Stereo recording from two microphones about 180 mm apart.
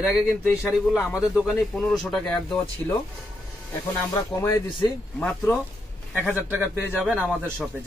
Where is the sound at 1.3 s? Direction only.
Centre (ahead or behind).